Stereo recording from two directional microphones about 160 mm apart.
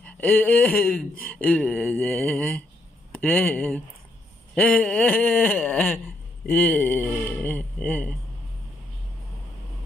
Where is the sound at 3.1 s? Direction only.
10° left (ahead or behind).